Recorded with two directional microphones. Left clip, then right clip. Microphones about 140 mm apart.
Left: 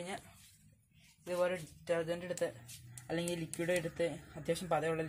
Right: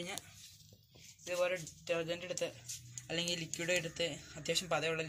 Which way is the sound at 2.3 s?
30° left (ahead or behind).